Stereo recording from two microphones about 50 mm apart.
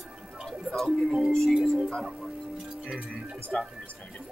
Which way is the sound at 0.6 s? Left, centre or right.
Centre.